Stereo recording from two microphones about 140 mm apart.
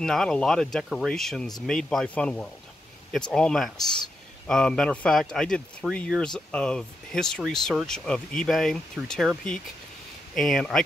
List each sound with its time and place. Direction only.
0.0 s speech: 5° left (ahead or behind)